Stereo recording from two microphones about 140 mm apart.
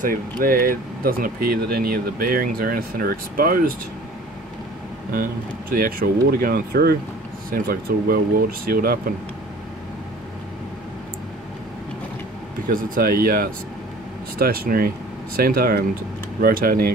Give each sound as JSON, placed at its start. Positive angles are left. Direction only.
{"t": 0.4, "sound": "speech", "side_deg": -90}
{"t": 5.1, "sound": "speech", "side_deg": -90}
{"t": 12.6, "sound": "speech", "side_deg": -80}